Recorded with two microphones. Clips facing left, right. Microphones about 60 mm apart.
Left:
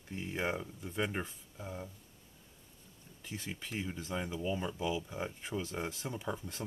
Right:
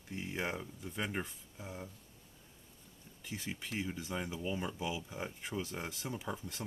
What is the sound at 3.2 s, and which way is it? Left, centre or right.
Speech, centre.